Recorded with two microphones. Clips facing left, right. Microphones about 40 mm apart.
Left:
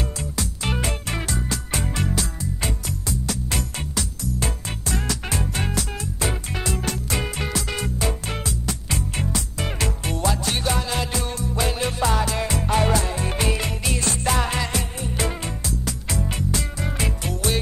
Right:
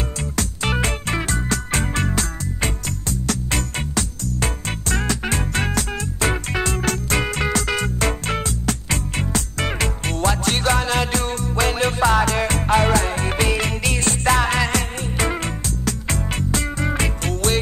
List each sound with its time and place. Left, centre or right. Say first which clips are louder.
0.7 s music: right 4 dB; right
3.4 s music: right 4 dB; right
9.7 s music: right 3 dB; right
12.4 s music: right 4 dB; right
17.2 s music: right 4 dB; right